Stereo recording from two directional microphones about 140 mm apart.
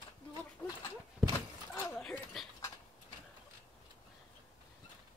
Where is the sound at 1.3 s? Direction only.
20° left (ahead or behind).